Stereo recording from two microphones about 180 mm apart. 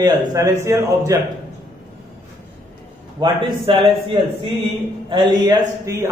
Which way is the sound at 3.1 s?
25° right (ahead or behind).